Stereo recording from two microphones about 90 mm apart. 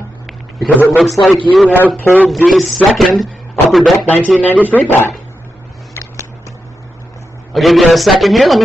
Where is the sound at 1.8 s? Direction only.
20° left (ahead or behind).